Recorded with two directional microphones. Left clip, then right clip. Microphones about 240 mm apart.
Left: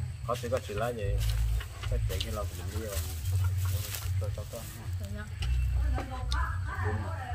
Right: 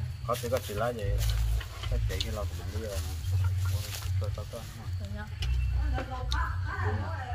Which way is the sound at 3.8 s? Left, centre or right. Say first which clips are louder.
Even; centre.